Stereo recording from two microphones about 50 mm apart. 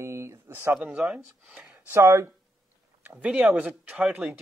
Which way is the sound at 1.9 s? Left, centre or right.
Right.